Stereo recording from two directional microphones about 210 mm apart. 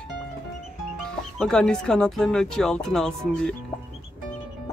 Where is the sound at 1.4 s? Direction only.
5° left (ahead or behind).